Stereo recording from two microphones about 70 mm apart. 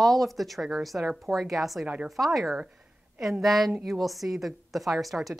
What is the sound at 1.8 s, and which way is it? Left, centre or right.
Speech, right.